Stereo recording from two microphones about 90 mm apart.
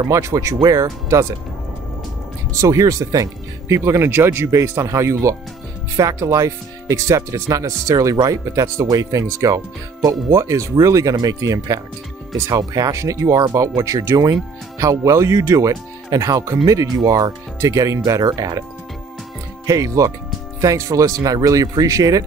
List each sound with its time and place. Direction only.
0.0 s speech: 35° right (ahead or behind)
2.6 s speech: 40° right (ahead or behind)
19.6 s speech: 35° right (ahead or behind)